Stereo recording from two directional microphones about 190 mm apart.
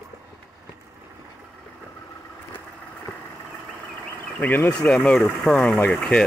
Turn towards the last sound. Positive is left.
turn(degrees=5)  # may be behind; listen again after turning